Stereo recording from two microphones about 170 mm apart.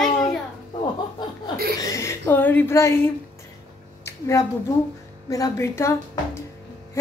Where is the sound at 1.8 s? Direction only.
20° left (ahead or behind).